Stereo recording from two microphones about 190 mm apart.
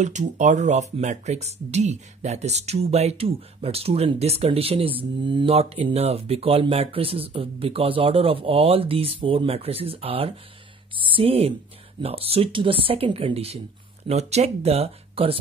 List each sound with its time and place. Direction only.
0.0 s speech: 40° right (ahead or behind)